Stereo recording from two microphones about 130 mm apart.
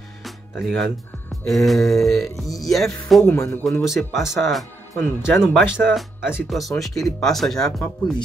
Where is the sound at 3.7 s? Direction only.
Centre (ahead or behind).